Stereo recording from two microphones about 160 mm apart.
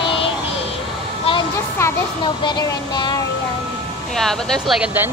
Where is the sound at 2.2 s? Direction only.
25° left (ahead or behind).